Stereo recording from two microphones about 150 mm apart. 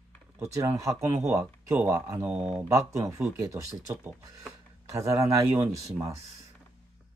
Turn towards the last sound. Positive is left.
turn(degrees=-20)  # may be behind; listen again after turning